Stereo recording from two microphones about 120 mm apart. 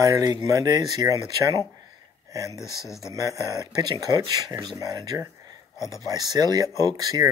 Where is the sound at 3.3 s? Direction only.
30° right (ahead or behind).